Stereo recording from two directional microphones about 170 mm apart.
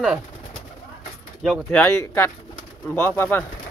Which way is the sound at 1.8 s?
15° left (ahead or behind).